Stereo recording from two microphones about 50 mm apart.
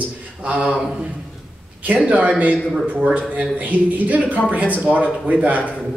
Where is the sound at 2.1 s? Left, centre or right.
Right.